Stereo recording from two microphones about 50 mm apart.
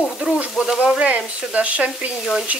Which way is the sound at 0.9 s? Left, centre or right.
Right.